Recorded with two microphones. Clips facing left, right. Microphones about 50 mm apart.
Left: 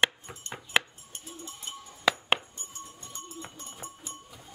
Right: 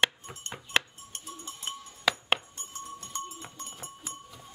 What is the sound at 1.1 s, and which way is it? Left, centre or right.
Cowbell, right.